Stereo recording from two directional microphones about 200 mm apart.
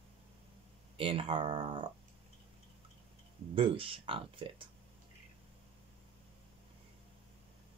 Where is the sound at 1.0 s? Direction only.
25° right (ahead or behind).